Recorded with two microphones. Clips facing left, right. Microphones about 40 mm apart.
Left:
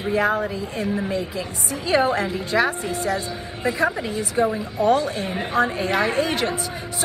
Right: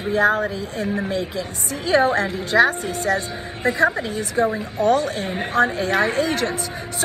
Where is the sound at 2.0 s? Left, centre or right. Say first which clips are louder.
Right 2 dB; right.